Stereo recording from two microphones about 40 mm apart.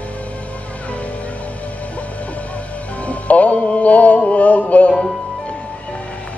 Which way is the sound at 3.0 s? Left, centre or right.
Left.